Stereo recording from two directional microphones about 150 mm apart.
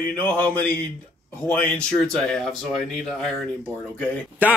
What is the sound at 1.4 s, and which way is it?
Speech, 10° left (ahead or behind).